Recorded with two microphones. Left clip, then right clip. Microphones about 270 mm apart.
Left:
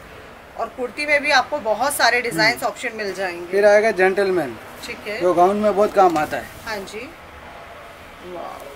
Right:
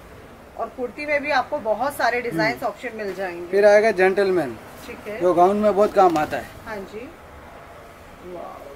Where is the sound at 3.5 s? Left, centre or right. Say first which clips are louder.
Even; centre.